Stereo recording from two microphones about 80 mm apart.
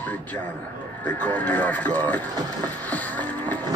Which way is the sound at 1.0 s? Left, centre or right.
Centre.